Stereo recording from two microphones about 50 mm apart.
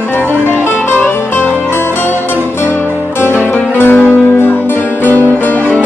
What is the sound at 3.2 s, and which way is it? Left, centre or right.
Music, left.